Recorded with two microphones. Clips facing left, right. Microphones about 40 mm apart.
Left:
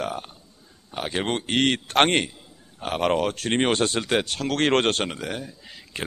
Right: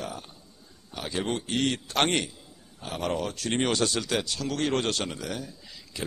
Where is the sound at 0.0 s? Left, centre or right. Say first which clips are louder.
Left 7 dB; left.